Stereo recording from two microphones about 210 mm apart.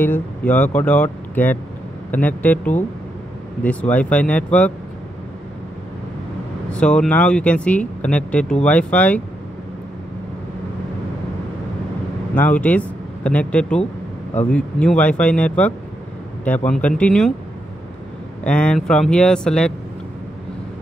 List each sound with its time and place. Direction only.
0.0 s speech: 10° left (ahead or behind)
6.7 s speech: 5° left (ahead or behind)
12.4 s speech: 5° left (ahead or behind)
18.4 s speech: 5° left (ahead or behind)